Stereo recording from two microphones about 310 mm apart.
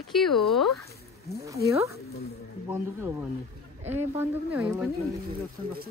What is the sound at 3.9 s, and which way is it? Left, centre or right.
Speech, centre.